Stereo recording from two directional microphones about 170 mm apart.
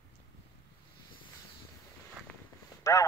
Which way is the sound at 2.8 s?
20° left (ahead or behind).